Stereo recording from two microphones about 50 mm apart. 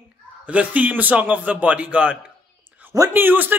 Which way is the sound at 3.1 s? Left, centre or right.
Right.